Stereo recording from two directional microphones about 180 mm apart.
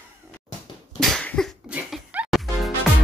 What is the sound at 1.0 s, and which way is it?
Music, 5° left (ahead or behind).